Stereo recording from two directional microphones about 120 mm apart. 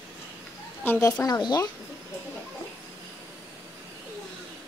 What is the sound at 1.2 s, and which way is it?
Speech, 30° left (ahead or behind).